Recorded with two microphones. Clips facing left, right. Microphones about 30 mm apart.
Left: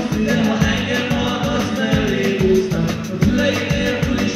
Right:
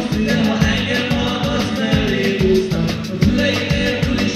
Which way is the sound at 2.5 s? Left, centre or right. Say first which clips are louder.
Even; right.